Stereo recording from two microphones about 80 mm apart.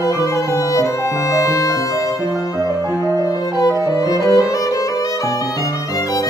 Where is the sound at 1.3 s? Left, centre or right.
Left.